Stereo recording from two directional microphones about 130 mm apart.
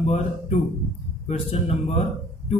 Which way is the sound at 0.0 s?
55° left (ahead or behind).